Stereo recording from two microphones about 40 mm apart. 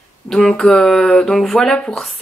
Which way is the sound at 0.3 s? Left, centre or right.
Centre.